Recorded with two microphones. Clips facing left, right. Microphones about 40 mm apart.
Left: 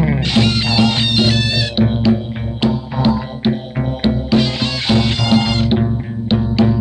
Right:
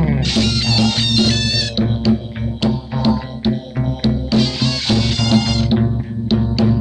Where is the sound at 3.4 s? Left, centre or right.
Left.